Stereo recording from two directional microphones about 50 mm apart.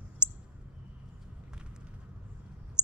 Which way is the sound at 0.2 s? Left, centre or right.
Centre.